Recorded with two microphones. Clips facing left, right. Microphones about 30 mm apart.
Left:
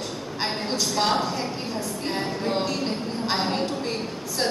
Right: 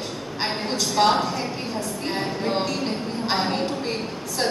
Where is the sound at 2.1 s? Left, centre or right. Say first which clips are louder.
Right 1 dB; centre.